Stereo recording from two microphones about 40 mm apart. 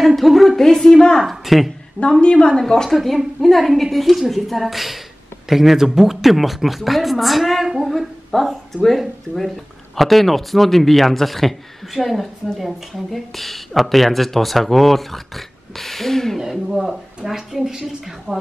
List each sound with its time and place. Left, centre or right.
0.0 s a woman's voice: centre
2.0 s a woman's voice: left
2.9 s a woman's voice: centre
16.3 s speech: centre